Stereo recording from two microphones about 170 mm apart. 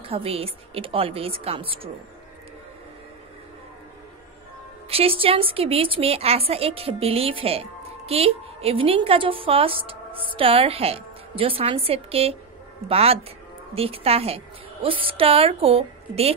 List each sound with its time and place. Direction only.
0.0 s a woman's voice: 35° right (ahead or behind)
4.8 s a woman's voice: 35° right (ahead or behind)